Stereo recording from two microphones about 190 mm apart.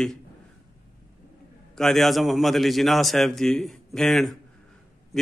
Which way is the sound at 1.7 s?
Centre (ahead or behind).